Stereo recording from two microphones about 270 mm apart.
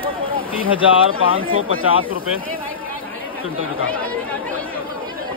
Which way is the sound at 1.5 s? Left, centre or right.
Left.